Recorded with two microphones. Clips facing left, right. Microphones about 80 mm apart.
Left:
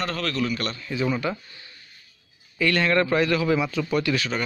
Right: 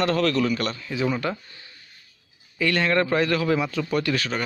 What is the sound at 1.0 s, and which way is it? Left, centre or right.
Speech, right.